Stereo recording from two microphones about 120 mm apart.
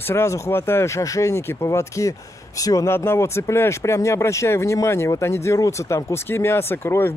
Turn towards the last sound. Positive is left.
turn(degrees=20)  # may be behind; listen again after turning